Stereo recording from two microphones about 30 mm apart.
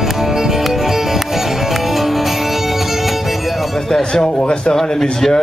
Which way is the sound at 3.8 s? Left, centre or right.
Centre.